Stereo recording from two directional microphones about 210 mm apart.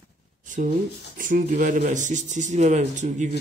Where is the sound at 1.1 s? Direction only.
40° right (ahead or behind).